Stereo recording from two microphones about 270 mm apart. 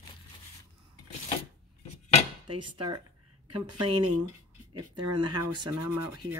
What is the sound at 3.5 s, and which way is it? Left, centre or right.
Speech, right.